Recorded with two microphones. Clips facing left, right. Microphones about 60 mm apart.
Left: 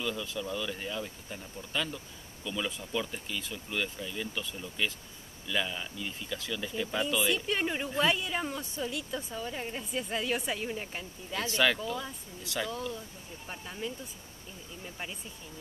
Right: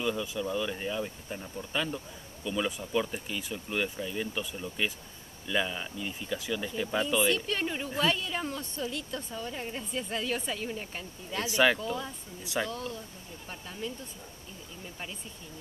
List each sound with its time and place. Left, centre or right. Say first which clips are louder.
0.0 s speech: right 3 dB; centre
7.2 s speech: right 1 dB; centre
11.4 s speech: right 3 dB; centre
12.6 s speech: even; centre